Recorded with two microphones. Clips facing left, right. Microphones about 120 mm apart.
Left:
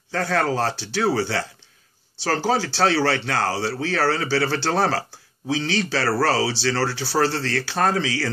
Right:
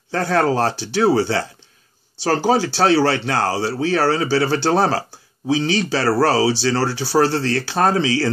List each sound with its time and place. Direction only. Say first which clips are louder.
0.1 s speech: right 4 dB; 25° right (ahead or behind)